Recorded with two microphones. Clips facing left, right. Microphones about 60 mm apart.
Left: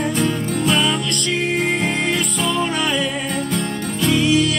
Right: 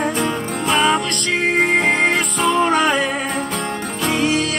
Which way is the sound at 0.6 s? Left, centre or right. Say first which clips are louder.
Right 2 dB; right.